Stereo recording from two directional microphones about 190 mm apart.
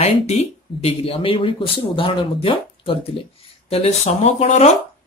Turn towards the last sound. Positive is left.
turn(degrees=35)  # may be behind; listen again after turning